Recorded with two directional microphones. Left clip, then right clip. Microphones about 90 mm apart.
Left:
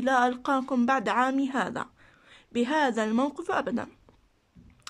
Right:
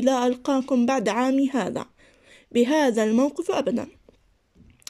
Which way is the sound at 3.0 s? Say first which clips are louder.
Right 5 dB; 20° right (ahead or behind).